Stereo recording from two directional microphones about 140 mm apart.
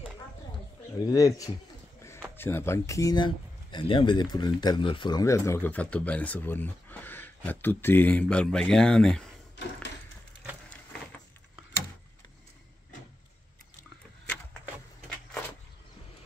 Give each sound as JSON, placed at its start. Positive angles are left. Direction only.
{"t": 1.0, "sound": "speech", "side_deg": 25}
{"t": 5.2, "sound": "speech", "side_deg": 20}